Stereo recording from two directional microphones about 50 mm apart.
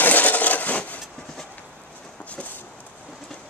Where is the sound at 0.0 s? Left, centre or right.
Left.